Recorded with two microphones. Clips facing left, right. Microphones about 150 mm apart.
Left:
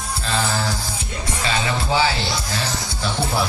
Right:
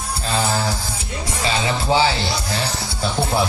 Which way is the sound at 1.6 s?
25° right (ahead or behind).